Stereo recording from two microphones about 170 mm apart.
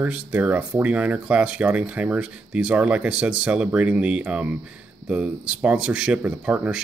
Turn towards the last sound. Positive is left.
turn(degrees=-5)  # may be behind; listen again after turning